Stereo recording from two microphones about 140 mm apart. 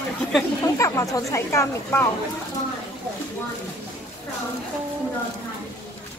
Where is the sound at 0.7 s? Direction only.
20° left (ahead or behind).